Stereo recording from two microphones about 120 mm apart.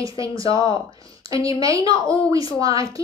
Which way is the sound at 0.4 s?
45° left (ahead or behind).